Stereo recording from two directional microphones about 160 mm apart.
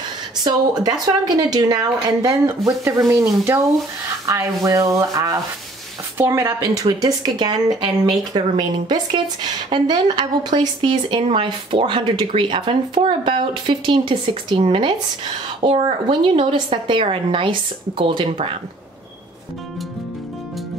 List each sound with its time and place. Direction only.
0.4 s speech: 25° right (ahead or behind)